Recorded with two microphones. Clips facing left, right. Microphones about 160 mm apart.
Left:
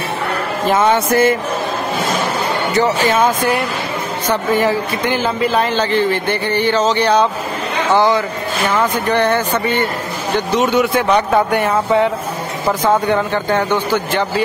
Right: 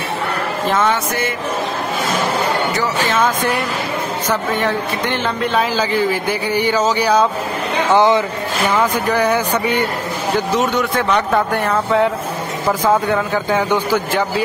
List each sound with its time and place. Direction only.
0.9 s music: 50° left (ahead or behind)
4.3 s a man's voice: centre (ahead or behind)
7.9 s speech: 20° right (ahead or behind)
8.6 s speech: 5° right (ahead or behind)
10.5 s a man's voice: centre (ahead or behind)